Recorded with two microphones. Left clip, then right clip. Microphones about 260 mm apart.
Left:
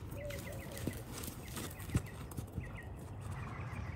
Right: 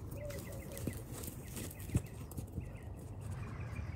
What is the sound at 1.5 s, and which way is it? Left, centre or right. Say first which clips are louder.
Clip-clop: left 2 dB; centre.